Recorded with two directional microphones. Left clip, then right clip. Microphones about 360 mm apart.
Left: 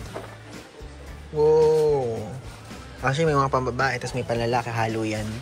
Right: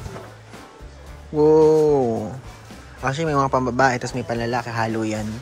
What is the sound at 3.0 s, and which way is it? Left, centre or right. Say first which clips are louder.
Speech: right 1 dB; centre.